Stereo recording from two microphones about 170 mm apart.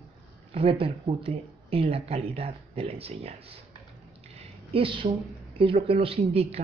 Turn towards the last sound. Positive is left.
turn(degrees=-35)  # may be behind; listen again after turning